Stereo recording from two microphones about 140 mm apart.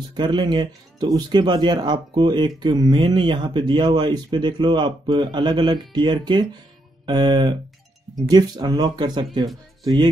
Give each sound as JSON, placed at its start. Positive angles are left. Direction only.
{"t": 0.1, "sound": "speech", "side_deg": -30}